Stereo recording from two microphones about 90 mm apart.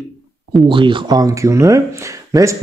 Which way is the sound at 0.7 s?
65° right (ahead or behind).